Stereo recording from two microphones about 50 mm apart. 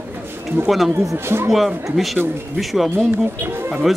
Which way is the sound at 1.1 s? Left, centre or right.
Right.